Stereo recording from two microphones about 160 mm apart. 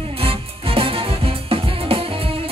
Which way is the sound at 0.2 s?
35° right (ahead or behind).